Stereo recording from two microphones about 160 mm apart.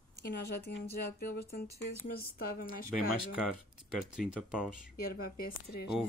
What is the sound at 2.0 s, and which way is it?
Speech, 65° left (ahead or behind).